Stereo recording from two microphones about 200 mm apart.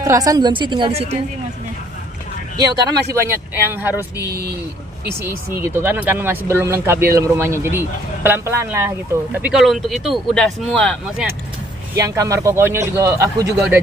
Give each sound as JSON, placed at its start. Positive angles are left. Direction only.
{"t": 0.0, "sound": "a woman's voice", "side_deg": -15}
{"t": 2.5, "sound": "a man's voice", "side_deg": -15}
{"t": 4.2, "sound": "speech", "side_deg": -50}
{"t": 5.6, "sound": "a man's voice", "side_deg": -10}
{"t": 12.0, "sound": "a man's voice", "side_deg": -15}